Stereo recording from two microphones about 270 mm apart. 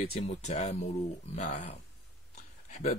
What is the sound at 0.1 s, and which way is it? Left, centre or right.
Speech, left.